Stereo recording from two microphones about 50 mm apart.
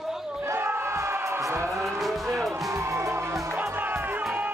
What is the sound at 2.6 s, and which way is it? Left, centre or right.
Music, right.